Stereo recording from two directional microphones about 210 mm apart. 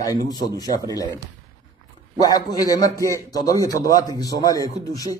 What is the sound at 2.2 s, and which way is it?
A man's voice, 20° left (ahead or behind).